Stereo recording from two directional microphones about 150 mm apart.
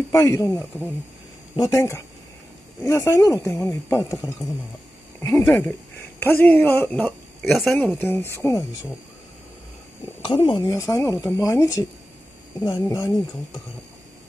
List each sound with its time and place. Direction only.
0.1 s speech: 20° left (ahead or behind); by 7.8 s centre (ahead or behind)
7.8 s speech: 15° left (ahead or behind)
10.2 s speech: 30° left (ahead or behind)
12.8 s speech: 25° left (ahead or behind)